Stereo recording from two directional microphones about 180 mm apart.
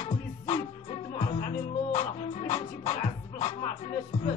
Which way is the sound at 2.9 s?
30° left (ahead or behind).